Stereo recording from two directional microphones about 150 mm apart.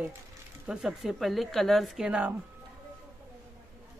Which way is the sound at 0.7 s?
5° right (ahead or behind).